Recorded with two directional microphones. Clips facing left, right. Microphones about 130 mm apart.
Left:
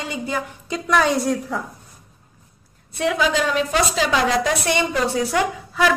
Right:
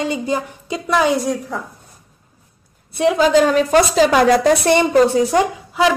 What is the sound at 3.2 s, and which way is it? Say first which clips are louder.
A woman's voice: right 8 dB; 40° right (ahead or behind).